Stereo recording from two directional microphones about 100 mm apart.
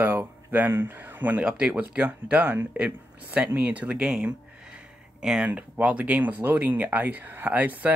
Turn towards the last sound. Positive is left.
turn(degrees=-15)  # may be behind; listen again after turning